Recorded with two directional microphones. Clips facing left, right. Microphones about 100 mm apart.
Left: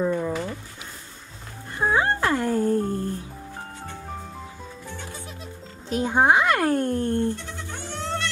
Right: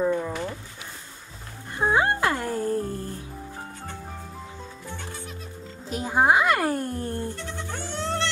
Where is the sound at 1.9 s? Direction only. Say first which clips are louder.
Even; 10° right (ahead or behind).